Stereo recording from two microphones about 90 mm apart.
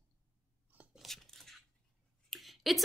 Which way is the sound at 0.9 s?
Centre (ahead or behind).